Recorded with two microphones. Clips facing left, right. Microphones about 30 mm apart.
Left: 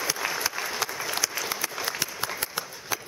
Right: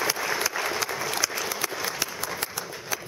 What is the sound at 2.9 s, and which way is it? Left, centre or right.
Walk, centre.